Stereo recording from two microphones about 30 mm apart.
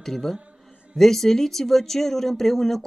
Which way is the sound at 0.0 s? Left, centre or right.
Centre.